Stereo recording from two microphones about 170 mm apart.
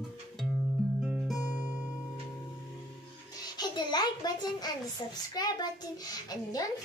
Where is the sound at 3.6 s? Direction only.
25° left (ahead or behind).